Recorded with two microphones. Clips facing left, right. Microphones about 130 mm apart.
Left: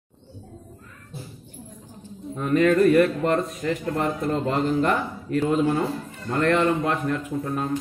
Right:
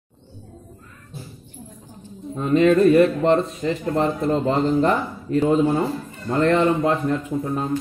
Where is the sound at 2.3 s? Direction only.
25° right (ahead or behind).